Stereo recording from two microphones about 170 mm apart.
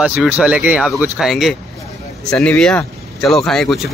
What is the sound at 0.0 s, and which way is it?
Speech, 10° right (ahead or behind).